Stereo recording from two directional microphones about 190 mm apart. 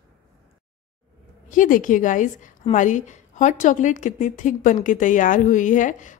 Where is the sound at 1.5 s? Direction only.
45° left (ahead or behind).